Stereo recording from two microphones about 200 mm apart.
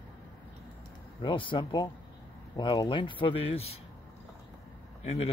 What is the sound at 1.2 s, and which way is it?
Speech, 25° left (ahead or behind).